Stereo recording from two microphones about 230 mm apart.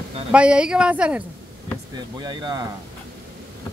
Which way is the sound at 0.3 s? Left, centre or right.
Centre.